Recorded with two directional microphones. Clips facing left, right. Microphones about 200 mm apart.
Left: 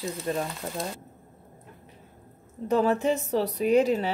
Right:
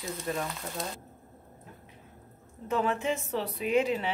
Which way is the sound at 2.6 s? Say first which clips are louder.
Left 6 dB; 35° left (ahead or behind).